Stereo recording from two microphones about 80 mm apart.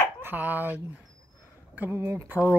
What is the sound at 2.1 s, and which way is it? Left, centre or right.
Speech, right.